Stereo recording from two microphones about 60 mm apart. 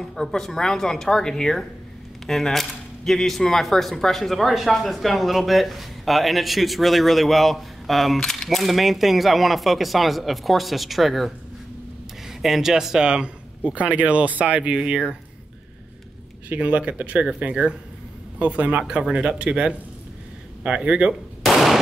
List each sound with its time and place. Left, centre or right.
0.0 s speech: centre
16.4 s speech: right